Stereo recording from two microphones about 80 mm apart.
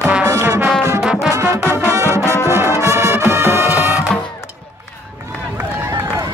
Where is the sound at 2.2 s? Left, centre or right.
Left.